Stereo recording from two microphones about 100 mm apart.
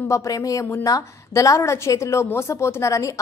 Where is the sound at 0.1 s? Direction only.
35° left (ahead or behind).